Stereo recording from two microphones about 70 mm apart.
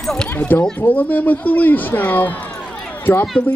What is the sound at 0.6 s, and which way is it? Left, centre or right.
Speech, centre.